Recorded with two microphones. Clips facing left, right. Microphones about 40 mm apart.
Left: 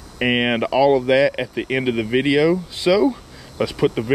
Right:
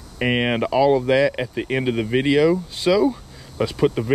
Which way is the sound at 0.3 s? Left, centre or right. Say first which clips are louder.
Left 1 dB; left.